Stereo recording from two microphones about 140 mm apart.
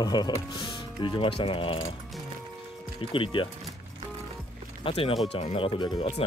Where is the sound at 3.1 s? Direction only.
40° left (ahead or behind).